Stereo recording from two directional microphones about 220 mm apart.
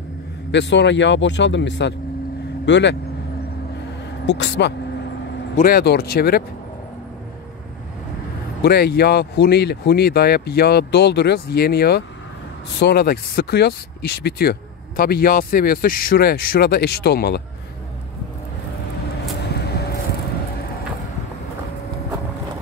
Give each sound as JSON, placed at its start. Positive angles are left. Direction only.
{"t": 0.5, "sound": "speech", "side_deg": 50}
{"t": 4.3, "sound": "speech", "side_deg": 50}
{"t": 8.6, "sound": "speech", "side_deg": 45}
{"t": 19.4, "sound": "vehicle", "side_deg": 50}